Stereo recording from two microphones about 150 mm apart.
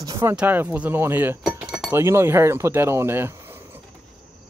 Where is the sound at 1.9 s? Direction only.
15° right (ahead or behind).